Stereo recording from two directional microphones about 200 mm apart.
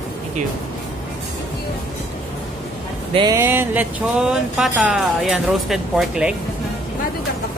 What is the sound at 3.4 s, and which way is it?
Speech, 10° right (ahead or behind).